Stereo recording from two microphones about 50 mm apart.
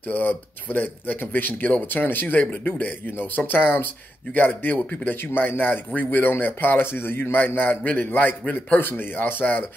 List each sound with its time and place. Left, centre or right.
0.1 s a man's voice: left